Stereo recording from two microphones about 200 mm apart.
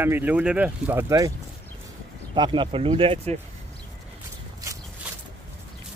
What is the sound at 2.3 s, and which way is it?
Speech, 25° right (ahead or behind).